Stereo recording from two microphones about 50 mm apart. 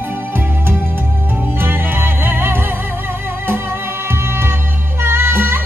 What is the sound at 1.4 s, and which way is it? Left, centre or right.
Music, right.